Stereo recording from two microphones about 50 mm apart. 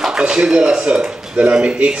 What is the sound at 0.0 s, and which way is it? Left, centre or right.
Speech, centre.